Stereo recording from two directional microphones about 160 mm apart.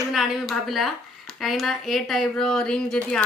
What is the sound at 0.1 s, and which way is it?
Speech, centre (ahead or behind).